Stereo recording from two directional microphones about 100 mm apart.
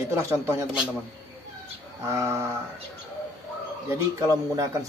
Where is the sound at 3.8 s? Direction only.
35° right (ahead or behind).